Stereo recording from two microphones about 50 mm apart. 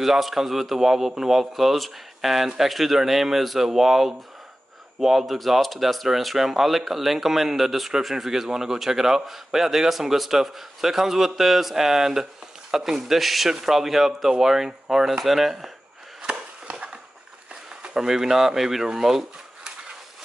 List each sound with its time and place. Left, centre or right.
0.0 s speech: centre
16.2 s chop: centre
17.6 s speech: centre